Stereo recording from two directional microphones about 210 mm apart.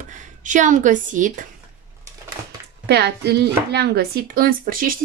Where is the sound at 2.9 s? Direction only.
50° right (ahead or behind).